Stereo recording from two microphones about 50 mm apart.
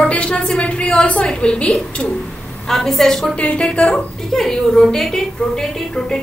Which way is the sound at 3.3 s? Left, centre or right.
Left.